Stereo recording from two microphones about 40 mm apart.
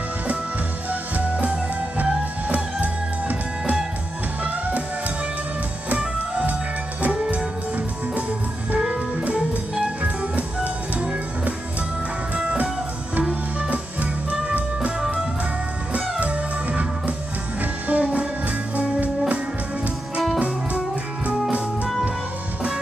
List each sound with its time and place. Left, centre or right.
1.3 s music: right
7.2 s music: right
10.0 s music: right
13.3 s music: right
15.9 s music: right